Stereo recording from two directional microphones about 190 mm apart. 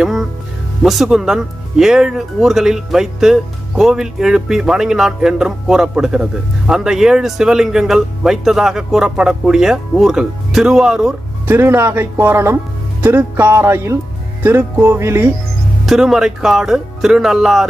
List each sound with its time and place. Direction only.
0.0 s music: centre (ahead or behind)
0.8 s speech: centre (ahead or behind)
15.8 s speech: centre (ahead or behind)